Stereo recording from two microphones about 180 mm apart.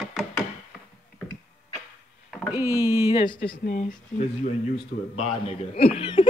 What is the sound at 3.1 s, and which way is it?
Speech, 25° left (ahead or behind).